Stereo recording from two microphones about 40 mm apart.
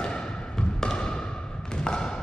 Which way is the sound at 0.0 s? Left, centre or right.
Left.